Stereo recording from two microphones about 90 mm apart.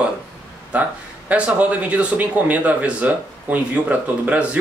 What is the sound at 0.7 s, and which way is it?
Speech, 15° right (ahead or behind).